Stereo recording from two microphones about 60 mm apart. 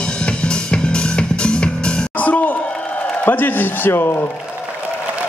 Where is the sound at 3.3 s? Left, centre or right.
Left.